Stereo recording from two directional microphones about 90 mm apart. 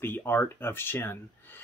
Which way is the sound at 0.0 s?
25° left (ahead or behind).